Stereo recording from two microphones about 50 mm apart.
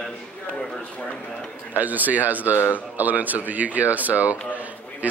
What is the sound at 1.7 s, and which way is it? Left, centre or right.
A man's voice, right.